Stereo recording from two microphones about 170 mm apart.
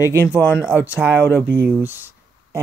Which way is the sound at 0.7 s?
10° right (ahead or behind).